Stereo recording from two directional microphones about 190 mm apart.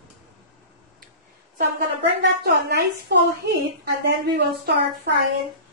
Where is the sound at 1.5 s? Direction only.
55° right (ahead or behind).